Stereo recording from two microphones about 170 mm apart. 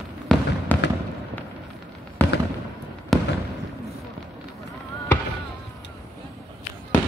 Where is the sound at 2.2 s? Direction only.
10° left (ahead or behind).